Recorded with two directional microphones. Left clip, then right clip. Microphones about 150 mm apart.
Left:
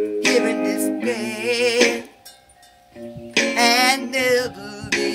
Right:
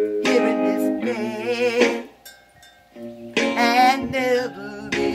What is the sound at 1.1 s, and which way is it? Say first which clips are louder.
Music: left 2 dB; 5° left (ahead or behind).